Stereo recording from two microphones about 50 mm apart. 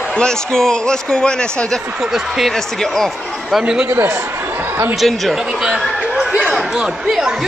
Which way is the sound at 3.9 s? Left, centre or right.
Right.